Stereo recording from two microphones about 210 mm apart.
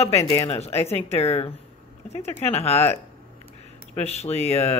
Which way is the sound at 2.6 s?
30° left (ahead or behind).